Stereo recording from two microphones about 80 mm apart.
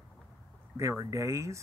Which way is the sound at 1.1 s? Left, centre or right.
Right.